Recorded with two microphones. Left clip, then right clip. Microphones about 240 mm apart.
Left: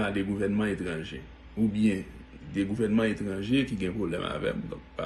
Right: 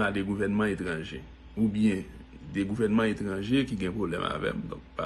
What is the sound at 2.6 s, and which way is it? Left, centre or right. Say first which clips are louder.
Speech: even; centre.